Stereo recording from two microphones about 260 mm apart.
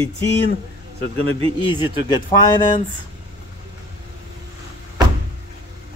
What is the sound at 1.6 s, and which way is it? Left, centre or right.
Speech, centre.